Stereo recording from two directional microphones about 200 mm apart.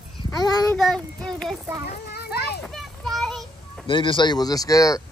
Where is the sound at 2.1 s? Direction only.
55° left (ahead or behind).